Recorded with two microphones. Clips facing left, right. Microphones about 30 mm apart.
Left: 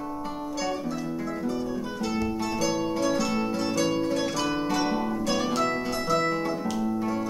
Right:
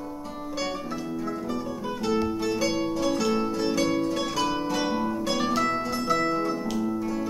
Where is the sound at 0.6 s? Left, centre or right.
Centre.